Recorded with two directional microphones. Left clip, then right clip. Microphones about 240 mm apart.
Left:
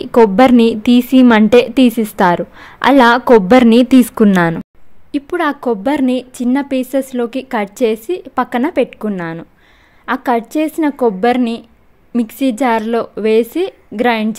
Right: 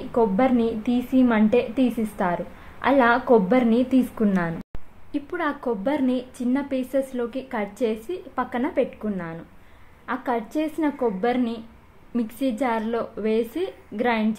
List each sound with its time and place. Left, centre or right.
0.1 s a woman's voice: left